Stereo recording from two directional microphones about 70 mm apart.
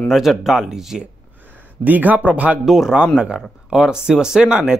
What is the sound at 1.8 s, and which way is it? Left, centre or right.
Speech, right.